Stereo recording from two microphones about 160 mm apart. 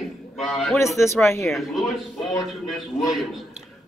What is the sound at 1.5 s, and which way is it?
Speech, centre (ahead or behind).